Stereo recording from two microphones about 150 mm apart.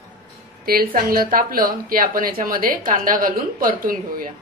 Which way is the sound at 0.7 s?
75° right (ahead or behind).